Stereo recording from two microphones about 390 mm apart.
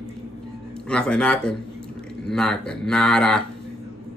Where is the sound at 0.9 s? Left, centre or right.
Centre.